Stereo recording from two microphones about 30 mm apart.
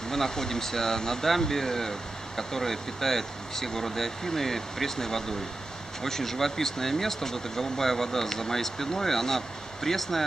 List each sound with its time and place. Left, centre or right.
0.1 s speech: centre